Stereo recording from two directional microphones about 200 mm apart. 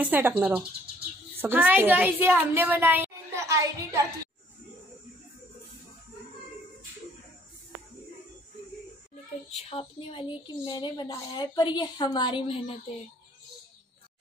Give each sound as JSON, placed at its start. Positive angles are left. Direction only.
{"t": 0.0, "sound": "a woman's voice", "side_deg": -10}
{"t": 9.7, "sound": "a woman's voice", "side_deg": 25}